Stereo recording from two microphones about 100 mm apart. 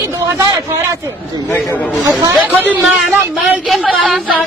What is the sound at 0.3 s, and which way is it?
Speech, 35° right (ahead or behind).